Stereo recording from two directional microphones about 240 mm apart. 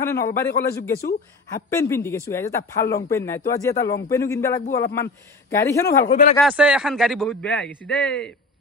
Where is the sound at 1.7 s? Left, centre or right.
Centre.